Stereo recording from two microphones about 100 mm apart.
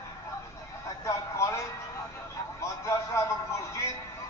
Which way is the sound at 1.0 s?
30° left (ahead or behind).